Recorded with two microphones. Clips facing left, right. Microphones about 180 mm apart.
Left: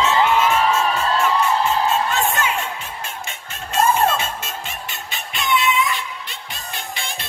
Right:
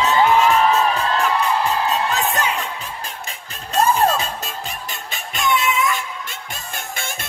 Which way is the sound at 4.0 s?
35° right (ahead or behind).